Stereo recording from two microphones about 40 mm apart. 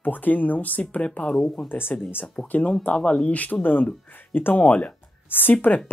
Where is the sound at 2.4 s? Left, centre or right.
Left.